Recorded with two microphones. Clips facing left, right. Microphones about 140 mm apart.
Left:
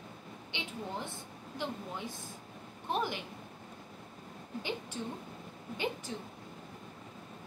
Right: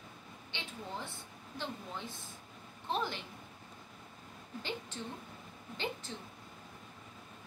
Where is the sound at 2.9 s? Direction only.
10° left (ahead or behind).